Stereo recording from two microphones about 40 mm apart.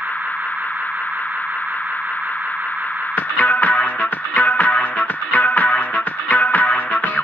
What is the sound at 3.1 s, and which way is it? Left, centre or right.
Music, left.